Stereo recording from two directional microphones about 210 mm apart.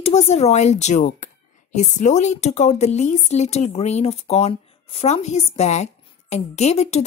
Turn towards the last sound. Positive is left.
turn(degrees=30)  # may be behind; listen again after turning